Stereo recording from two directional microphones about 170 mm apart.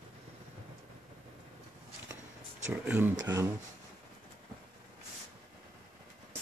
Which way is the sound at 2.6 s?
10° right (ahead or behind).